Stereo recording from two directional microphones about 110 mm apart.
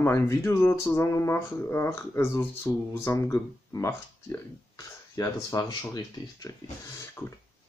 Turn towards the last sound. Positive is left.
turn(degrees=20)  # may be behind; listen again after turning